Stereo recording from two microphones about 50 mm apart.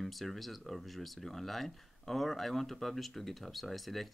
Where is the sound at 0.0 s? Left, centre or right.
Centre.